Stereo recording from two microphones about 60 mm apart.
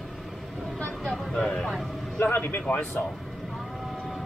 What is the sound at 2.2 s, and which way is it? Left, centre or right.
Speech, left.